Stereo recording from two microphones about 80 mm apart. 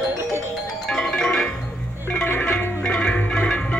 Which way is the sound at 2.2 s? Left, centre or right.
Left.